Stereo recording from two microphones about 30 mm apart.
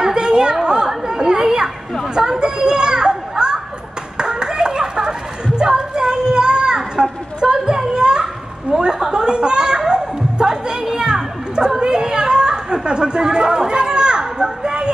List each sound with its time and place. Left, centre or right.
0.0 s chatter: right
2.4 s children playing: right
4.2 s clapping: right
5.7 s a sound: right
9.1 s music: right